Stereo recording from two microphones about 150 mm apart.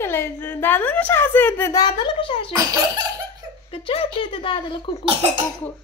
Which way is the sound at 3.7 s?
40° left (ahead or behind).